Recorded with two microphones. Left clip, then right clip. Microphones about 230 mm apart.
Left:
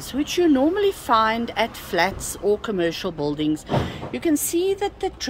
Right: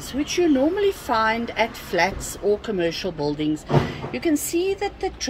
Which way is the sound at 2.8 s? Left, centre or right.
Centre.